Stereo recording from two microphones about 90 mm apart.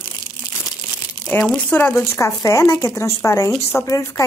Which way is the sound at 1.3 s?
20° left (ahead or behind).